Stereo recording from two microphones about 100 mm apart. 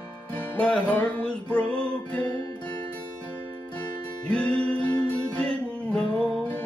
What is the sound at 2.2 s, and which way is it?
Music, 45° left (ahead or behind).